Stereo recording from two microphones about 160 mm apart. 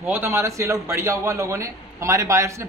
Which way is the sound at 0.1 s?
15° right (ahead or behind).